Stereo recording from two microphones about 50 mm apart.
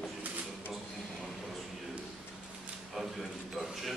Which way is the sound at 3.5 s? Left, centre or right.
Centre.